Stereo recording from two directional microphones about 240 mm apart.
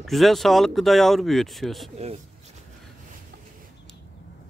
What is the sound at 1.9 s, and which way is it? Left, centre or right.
Speech, right.